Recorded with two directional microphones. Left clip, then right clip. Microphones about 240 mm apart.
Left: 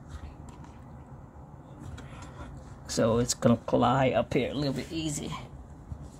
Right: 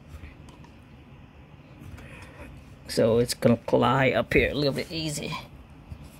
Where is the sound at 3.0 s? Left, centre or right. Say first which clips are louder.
Right 4 dB; centre; by 5.4 s right.